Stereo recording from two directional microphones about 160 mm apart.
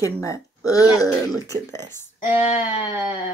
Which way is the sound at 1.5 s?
25° right (ahead or behind).